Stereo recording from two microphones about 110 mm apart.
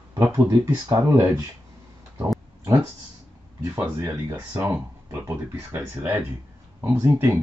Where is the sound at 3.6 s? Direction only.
20° right (ahead or behind).